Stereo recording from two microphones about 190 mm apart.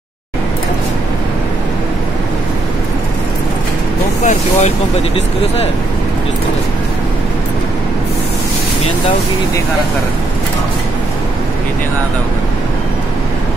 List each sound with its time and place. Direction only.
4.2 s speech: 40° left (ahead or behind)